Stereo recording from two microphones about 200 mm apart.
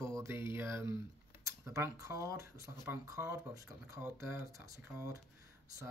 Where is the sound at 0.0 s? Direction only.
15° right (ahead or behind).